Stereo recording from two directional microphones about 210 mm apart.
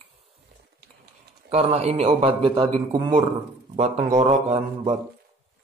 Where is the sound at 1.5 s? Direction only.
30° right (ahead or behind).